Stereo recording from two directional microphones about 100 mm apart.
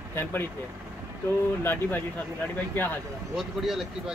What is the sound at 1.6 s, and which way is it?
A man's voice, 20° left (ahead or behind).